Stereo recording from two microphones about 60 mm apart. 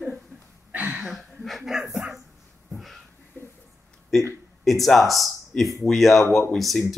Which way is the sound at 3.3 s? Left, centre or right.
Left.